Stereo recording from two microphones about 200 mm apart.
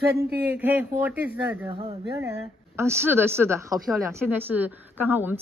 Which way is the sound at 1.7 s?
30° right (ahead or behind).